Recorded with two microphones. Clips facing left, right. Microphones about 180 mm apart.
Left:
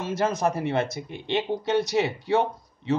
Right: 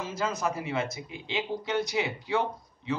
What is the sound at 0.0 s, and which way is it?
A man's voice, 75° left (ahead or behind).